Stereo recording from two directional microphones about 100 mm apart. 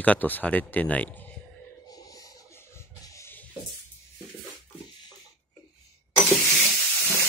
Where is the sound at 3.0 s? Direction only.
30° left (ahead or behind).